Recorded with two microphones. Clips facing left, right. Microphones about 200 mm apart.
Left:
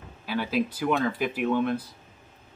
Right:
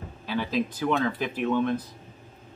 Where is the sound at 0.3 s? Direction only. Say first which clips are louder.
Even; 10° left (ahead or behind).